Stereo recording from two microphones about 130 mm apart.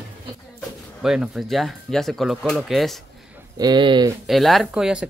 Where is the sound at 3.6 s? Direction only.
35° right (ahead or behind).